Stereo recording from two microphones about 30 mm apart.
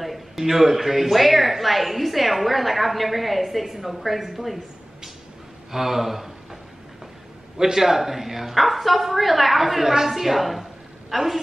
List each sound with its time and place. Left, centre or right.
0.0 s speech: centre
5.7 s speech: centre
7.5 s a man's voice: right
7.8 s speech: centre